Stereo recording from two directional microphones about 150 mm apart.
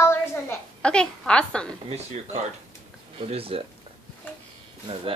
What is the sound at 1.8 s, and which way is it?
Speech, 45° right (ahead or behind).